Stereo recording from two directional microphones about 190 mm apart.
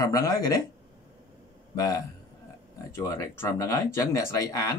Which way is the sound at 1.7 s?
20° left (ahead or behind).